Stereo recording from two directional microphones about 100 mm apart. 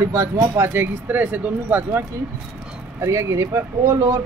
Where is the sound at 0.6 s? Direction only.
20° right (ahead or behind).